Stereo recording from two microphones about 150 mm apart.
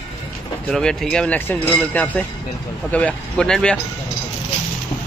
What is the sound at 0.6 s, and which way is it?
Speech, 5° left (ahead or behind).